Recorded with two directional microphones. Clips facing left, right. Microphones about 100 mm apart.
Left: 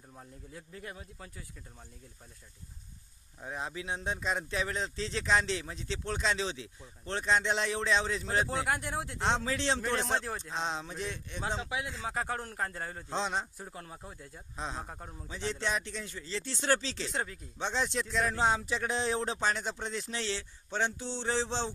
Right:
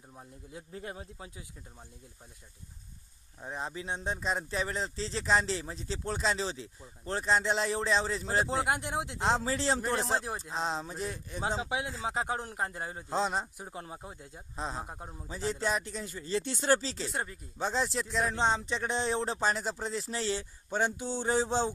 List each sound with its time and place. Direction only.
0.7 s a man's voice: 30° right (ahead or behind)
3.3 s speech: centre (ahead or behind)
8.5 s a man's voice: 25° right (ahead or behind)
9.2 s speech: centre (ahead or behind)
11.6 s speech: 30° right (ahead or behind)
12.1 s a man's voice: 20° right (ahead or behind)
13.1 s speech: 5° right (ahead or behind)
13.6 s a man's voice: 20° right (ahead or behind)
14.6 s speech: centre (ahead or behind)
14.9 s mantra: 15° right (ahead or behind)
15.2 s speech: 5° right (ahead or behind)
21.0 s mantra: 10° right (ahead or behind)